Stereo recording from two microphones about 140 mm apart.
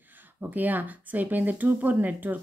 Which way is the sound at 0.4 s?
10° right (ahead or behind).